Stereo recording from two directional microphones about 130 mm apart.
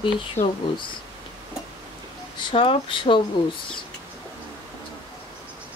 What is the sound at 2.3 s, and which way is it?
Speech, 45° left (ahead or behind).